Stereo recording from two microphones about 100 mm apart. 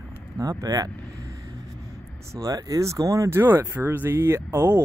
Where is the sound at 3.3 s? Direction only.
20° right (ahead or behind).